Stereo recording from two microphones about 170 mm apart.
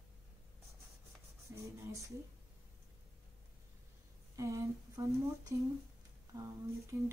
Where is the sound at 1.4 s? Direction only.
15° right (ahead or behind).